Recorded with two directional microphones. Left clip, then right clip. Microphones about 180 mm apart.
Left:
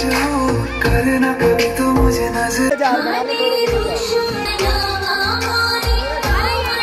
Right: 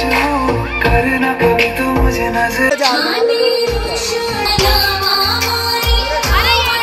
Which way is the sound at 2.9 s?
45° left (ahead or behind).